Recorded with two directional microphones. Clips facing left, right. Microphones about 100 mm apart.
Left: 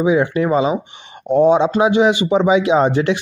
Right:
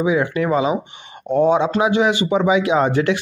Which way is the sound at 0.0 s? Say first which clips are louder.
Left 3 dB; 25° left (ahead or behind).